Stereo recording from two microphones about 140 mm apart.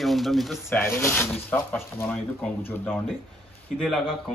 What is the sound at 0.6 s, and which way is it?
Speech, 15° left (ahead or behind).